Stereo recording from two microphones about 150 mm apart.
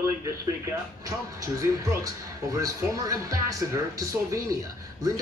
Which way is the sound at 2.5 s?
25° right (ahead or behind).